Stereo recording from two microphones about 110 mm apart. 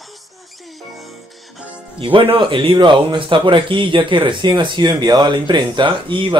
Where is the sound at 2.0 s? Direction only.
55° right (ahead or behind).